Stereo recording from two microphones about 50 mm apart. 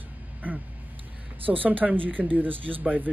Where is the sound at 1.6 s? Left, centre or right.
Right.